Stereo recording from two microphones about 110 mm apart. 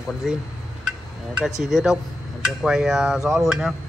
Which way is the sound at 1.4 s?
5° right (ahead or behind).